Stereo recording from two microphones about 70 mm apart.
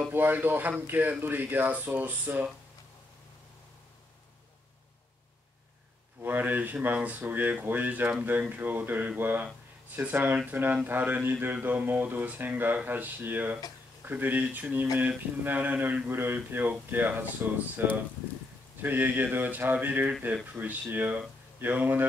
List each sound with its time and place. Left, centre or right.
0.1 s speech: right
6.2 s speech: right